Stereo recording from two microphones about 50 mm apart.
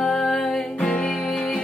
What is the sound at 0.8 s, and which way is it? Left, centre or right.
Music, left.